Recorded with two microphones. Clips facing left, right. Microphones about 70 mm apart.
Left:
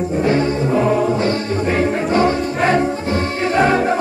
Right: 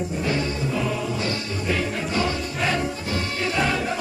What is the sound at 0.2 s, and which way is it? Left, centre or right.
Music, left.